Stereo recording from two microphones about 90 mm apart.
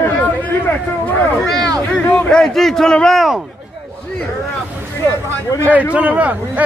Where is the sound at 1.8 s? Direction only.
15° left (ahead or behind).